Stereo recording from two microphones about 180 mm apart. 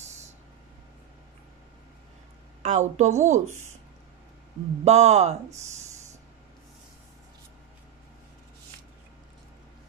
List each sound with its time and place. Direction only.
0.0 s a sound: 40° right (ahead or behind)
2.6 s speech: 40° right (ahead or behind)
4.8 s speech: 40° right (ahead or behind)